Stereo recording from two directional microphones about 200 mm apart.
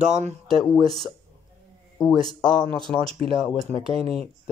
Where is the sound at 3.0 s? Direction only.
30° right (ahead or behind).